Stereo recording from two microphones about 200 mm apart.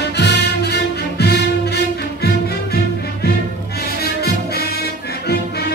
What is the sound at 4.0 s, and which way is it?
Music, 50° left (ahead or behind).